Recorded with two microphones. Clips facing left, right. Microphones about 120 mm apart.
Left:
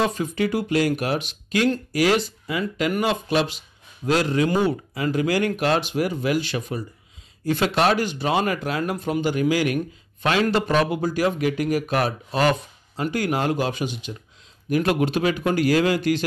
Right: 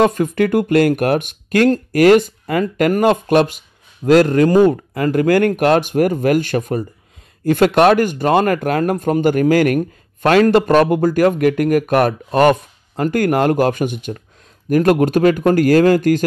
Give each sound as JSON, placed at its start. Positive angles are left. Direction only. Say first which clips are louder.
{"t": 0.0, "sound": "speech", "louder": "right 8 dB", "side_deg": -50}